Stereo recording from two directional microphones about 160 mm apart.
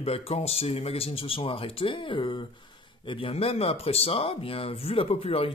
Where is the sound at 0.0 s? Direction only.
40° left (ahead or behind).